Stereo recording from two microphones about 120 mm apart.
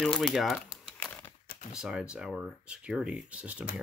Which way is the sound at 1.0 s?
15° left (ahead or behind).